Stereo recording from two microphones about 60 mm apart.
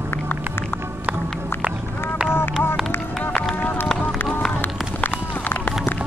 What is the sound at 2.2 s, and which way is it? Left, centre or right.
Run, left.